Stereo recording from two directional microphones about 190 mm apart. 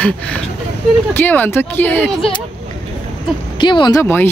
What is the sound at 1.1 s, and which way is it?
Speech, 10° left (ahead or behind).